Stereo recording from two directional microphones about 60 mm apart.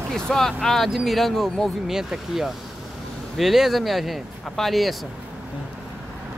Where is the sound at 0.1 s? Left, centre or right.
Centre.